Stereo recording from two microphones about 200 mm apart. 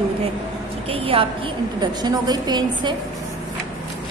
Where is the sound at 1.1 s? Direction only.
30° right (ahead or behind).